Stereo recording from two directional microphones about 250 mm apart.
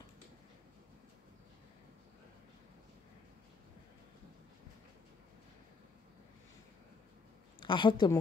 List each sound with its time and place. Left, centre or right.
7.6 s a woman's voice: centre